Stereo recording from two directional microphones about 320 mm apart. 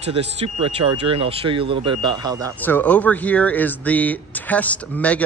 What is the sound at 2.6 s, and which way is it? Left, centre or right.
Speech, centre.